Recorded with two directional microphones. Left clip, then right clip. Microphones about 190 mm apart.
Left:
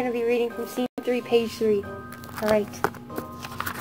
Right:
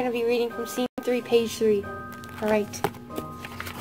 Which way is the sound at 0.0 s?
25° right (ahead or behind).